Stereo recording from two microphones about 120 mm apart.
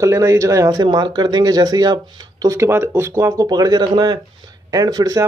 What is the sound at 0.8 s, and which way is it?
Speech, 40° right (ahead or behind).